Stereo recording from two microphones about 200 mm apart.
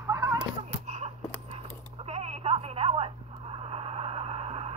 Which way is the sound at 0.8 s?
35° right (ahead or behind).